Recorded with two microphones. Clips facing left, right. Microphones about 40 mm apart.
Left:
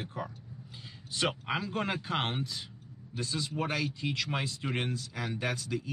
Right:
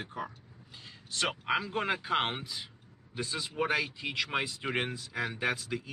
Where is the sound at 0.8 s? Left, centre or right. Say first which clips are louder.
Left 1 dB; centre.